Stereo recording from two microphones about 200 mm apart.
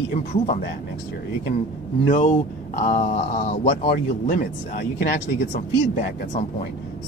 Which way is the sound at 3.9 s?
45° left (ahead or behind).